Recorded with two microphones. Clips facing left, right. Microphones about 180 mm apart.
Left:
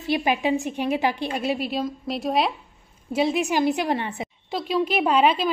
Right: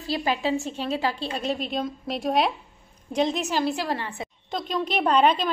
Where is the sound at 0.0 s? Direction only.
20° left (ahead or behind).